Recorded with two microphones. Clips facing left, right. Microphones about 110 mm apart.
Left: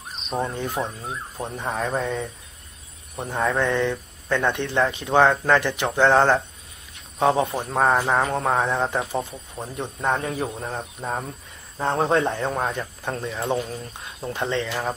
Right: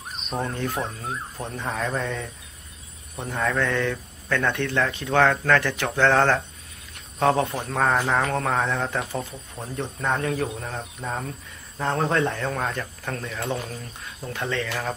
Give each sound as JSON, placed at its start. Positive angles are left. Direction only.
{"t": 0.4, "sound": "speech", "side_deg": 20}
{"t": 3.3, "sound": "speech", "side_deg": 25}